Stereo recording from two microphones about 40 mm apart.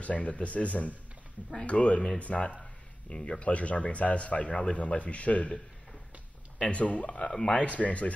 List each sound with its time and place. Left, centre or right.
0.0 s a man's voice: left
6.6 s a man's voice: left
7.2 s speech: centre
7.5 s a man's voice: left